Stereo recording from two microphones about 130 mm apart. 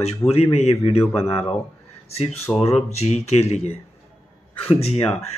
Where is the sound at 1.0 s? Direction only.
20° left (ahead or behind).